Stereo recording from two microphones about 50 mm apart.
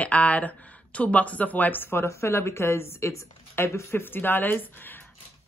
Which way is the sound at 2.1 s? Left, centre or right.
Left.